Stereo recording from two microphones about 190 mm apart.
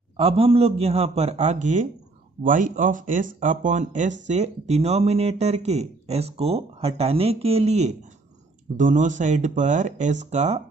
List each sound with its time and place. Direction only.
0.2 s speech: 30° right (ahead or behind)